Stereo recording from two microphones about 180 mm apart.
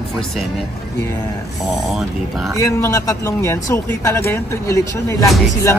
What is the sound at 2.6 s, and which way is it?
A man's voice, 15° left (ahead or behind).